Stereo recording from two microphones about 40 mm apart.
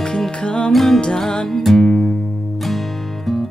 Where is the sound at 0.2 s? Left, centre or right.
Centre.